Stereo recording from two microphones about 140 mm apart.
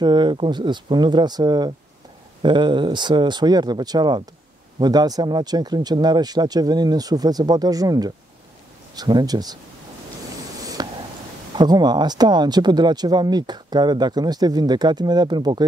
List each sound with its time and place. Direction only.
0.0 s speech: 30° right (ahead or behind)
10.6 s a sound: 25° right (ahead or behind)
11.5 s speech: 30° right (ahead or behind)